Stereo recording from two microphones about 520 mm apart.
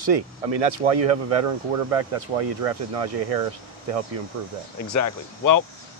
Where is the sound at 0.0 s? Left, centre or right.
Right.